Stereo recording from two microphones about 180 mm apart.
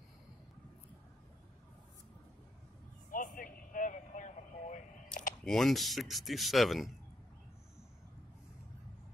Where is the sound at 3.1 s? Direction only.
50° left (ahead or behind).